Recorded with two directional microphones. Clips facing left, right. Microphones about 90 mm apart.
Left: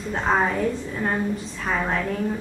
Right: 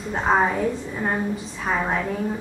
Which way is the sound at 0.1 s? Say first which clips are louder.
Right 2 dB; 10° right (ahead or behind).